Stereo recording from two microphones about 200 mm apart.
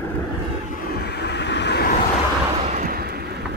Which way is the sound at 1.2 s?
60° left (ahead or behind).